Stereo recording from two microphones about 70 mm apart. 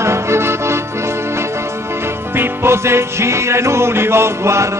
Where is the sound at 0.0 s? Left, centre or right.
Right.